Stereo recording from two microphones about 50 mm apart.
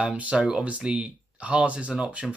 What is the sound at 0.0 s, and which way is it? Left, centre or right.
Speech, right.